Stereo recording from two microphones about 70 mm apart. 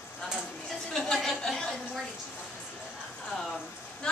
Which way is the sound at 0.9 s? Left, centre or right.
Centre.